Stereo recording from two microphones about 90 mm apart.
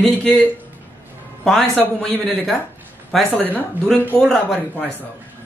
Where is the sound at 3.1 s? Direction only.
Centre (ahead or behind).